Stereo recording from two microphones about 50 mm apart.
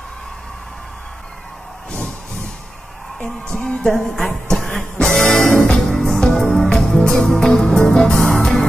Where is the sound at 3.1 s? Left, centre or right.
Centre.